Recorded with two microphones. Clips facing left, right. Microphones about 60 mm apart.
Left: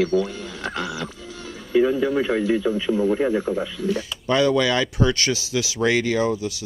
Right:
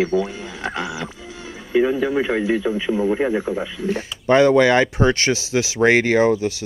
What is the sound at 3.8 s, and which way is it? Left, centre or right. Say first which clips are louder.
Speech: right 1 dB; right.